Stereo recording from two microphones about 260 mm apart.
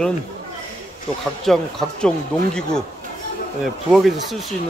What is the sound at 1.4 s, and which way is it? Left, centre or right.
A man's voice, centre.